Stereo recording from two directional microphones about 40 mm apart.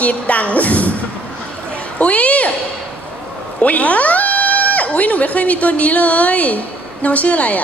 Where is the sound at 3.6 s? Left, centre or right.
Left.